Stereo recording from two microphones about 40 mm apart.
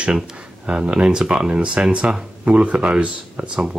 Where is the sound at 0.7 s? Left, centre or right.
Right.